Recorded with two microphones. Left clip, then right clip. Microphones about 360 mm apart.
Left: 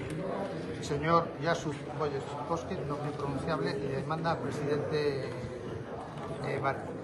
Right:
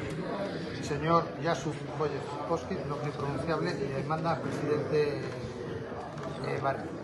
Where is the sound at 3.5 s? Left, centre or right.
Centre.